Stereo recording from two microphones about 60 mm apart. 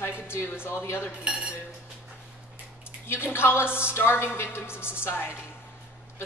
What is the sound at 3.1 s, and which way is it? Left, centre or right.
A woman's voice, left.